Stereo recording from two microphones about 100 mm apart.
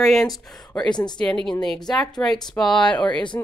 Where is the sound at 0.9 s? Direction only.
45° left (ahead or behind).